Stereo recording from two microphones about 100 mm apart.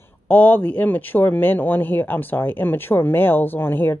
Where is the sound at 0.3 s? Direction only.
15° left (ahead or behind).